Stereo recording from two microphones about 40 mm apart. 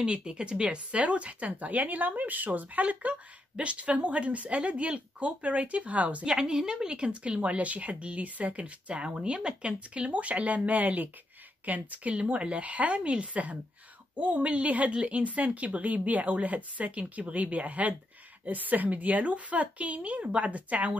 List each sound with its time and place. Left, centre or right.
0.0 s a woman's voice: right
6.2 s a woman's voice: centre; by 20.9 s right